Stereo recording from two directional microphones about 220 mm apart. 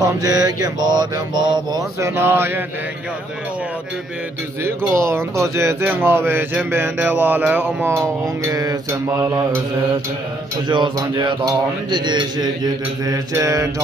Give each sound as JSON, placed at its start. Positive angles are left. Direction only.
{"t": 0.0, "sound": "speech", "side_deg": -15}
{"t": 4.6, "sound": "speech", "side_deg": -10}
{"t": 10.7, "sound": "mantra", "side_deg": -20}
{"t": 13.0, "sound": "speech", "side_deg": -15}